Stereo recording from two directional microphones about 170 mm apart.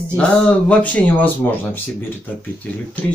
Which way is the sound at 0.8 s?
10° left (ahead or behind).